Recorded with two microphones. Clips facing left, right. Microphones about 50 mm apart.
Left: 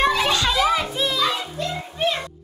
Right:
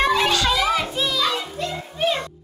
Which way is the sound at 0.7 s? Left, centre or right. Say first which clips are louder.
Even; centre.